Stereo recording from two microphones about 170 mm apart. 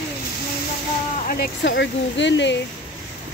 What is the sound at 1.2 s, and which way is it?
Speech, 80° left.